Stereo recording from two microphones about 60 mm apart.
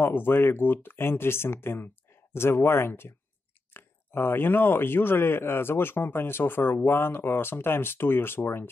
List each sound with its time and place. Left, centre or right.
0.0 s speech: left